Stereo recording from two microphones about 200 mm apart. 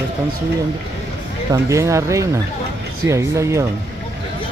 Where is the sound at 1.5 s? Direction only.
15° right (ahead or behind).